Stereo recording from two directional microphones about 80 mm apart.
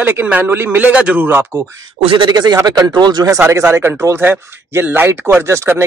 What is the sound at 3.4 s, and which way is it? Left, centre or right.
Speech, right.